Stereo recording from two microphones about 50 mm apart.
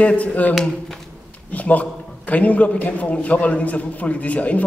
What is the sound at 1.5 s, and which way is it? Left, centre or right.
A man's voice, left.